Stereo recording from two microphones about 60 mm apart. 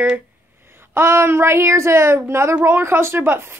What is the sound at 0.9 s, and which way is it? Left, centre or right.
A woman's voice, right.